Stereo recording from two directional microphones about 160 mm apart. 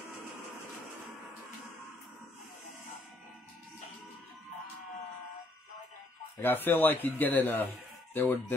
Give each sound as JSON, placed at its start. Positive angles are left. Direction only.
{"t": 6.3, "sound": "a man's voice", "side_deg": 15}